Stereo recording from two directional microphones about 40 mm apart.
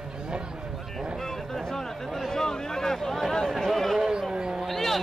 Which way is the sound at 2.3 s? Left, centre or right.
Centre.